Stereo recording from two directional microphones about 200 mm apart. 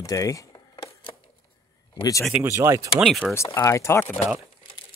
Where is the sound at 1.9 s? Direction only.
15° left (ahead or behind).